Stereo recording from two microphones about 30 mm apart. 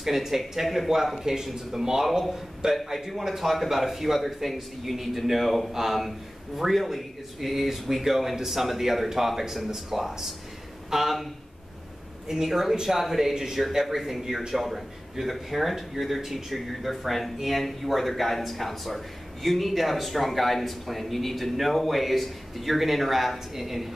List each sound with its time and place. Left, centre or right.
0.0 s speech: centre
1.2 s speech: centre
12.4 s speech: centre